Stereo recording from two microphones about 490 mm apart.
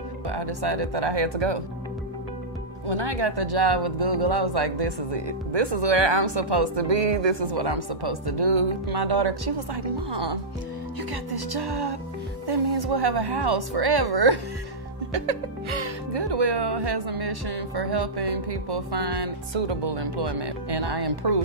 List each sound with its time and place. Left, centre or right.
0.3 s speech: right
2.9 s speech: right
11.3 s speech: right
15.1 s speech: right